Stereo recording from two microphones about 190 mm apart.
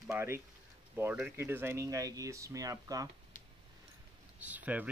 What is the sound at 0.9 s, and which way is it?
Speech, 10° right (ahead or behind).